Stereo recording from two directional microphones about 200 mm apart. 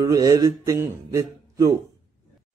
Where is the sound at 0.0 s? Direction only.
15° right (ahead or behind).